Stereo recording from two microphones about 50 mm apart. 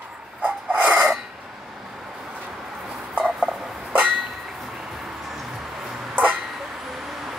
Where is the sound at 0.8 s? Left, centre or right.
Centre.